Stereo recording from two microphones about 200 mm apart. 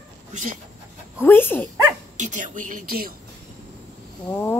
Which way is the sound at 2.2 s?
40° right (ahead or behind).